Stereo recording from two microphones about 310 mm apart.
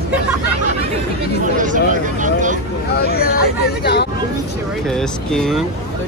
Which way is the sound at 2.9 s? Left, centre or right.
Left.